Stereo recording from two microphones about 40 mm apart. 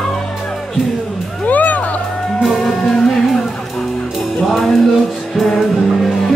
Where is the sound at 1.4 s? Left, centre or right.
Left.